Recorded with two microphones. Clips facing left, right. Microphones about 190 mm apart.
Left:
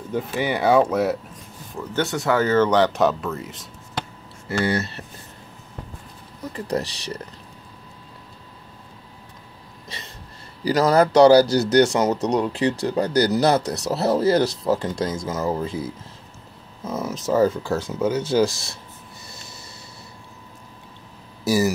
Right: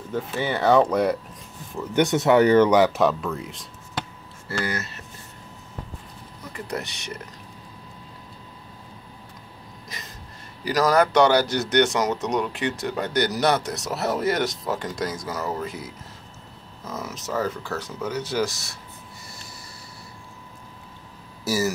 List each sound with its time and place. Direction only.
0.1 s speech: 15° left (ahead or behind)
2.0 s speech: 20° right (ahead or behind); by 3.6 s centre (ahead or behind)
4.5 s speech: 30° left (ahead or behind)
6.5 s speech: 35° left (ahead or behind)
9.8 s a sound: 30° left (ahead or behind)
10.6 s speech: 30° left (ahead or behind)
21.5 s speech: 15° left (ahead or behind)